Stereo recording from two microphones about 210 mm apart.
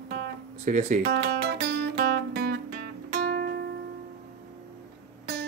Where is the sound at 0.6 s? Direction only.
35° right (ahead or behind).